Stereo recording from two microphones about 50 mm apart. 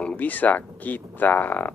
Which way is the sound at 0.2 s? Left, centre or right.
Left.